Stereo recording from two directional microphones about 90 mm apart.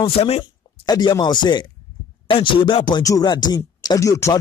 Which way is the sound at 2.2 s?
70° left (ahead or behind).